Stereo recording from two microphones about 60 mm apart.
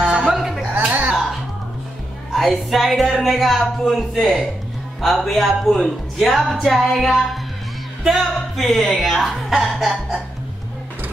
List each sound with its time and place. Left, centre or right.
0.0 s music: centre
0.7 s music: right
2.3 s speech: centre